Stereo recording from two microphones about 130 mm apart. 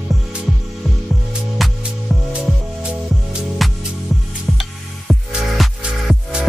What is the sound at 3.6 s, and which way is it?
Music, centre (ahead or behind).